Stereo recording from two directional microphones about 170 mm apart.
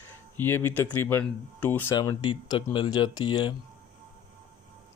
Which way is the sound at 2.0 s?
25° left (ahead or behind).